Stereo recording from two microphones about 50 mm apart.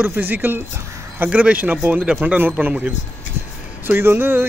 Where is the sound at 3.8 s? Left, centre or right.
Right.